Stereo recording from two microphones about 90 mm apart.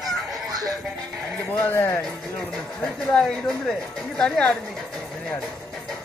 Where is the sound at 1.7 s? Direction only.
30° left (ahead or behind).